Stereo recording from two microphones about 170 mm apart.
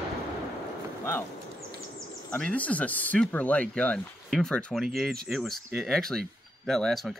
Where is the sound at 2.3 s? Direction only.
5° left (ahead or behind).